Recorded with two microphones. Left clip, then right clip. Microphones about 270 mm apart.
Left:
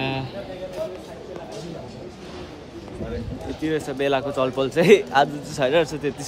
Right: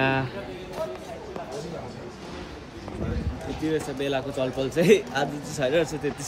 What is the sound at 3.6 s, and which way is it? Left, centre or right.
A man's voice, centre.